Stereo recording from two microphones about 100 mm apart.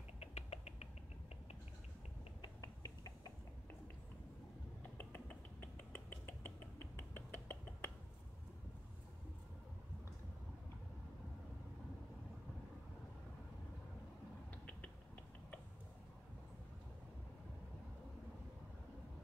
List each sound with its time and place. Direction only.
0.2 s rodents: 90° left
2.6 s finger snapping: 40° left (ahead or behind)
4.9 s finger snapping: 20° left (ahead or behind)
14.5 s a sound: 15° left (ahead or behind)